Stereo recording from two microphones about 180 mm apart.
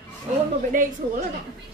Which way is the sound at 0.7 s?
50° right (ahead or behind).